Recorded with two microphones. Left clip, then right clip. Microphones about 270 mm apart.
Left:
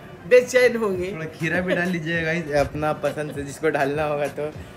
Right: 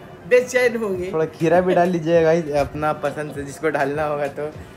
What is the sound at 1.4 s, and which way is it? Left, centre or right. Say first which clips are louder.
Speech: right 7 dB; right.